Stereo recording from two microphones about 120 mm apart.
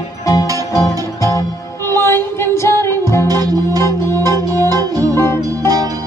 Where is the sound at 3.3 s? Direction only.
30° right (ahead or behind).